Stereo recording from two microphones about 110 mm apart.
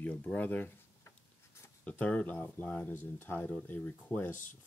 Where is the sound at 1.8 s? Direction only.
15° left (ahead or behind).